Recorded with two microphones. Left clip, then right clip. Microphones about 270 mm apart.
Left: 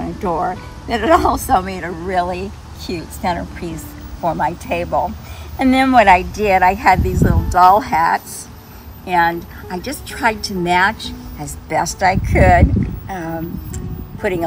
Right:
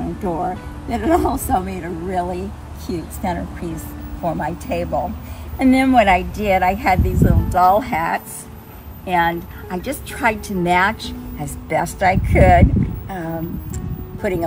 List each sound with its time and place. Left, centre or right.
0.2 s a woman's voice: centre